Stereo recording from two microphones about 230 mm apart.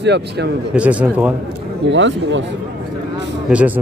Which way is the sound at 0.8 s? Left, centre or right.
Centre.